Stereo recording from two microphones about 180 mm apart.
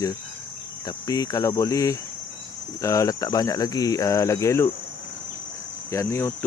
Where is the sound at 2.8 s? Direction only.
15° left (ahead or behind).